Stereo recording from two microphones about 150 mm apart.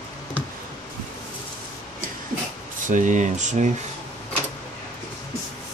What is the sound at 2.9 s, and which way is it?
Speech, 55° right (ahead or behind).